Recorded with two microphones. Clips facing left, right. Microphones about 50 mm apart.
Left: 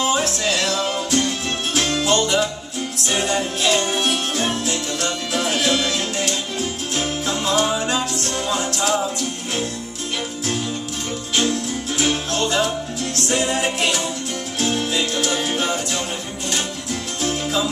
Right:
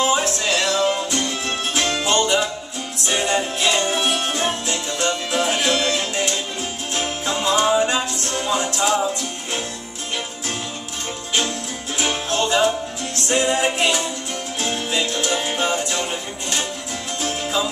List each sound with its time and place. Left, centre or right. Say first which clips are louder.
0.2 s music: even; centre
12.0 s music: even; centre